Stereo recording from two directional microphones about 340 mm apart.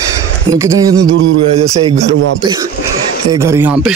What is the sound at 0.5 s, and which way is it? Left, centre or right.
A man's voice, centre.